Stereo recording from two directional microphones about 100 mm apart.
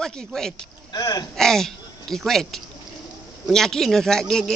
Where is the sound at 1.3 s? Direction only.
5° left (ahead or behind).